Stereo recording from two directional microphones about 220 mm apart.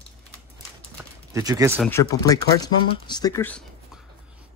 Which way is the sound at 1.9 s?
15° left (ahead or behind).